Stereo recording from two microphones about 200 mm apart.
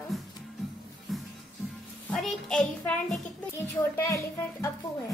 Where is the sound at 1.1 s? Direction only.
Centre (ahead or behind).